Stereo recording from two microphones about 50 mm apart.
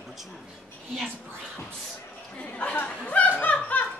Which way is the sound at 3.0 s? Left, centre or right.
Left.